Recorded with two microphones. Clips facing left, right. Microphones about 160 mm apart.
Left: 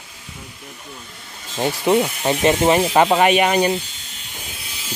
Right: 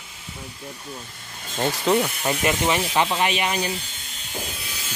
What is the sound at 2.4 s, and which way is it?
Speech, 40° left (ahead or behind).